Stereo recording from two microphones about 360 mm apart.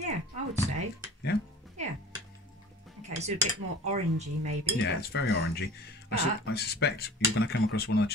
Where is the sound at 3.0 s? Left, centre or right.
Centre.